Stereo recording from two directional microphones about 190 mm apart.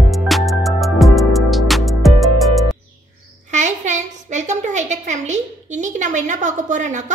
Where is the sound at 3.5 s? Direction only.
40° right (ahead or behind).